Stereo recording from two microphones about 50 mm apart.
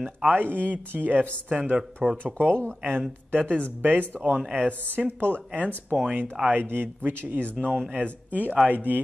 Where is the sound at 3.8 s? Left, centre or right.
Right.